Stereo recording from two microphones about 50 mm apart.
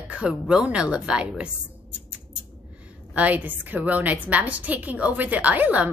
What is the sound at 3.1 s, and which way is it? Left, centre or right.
A woman's voice, right.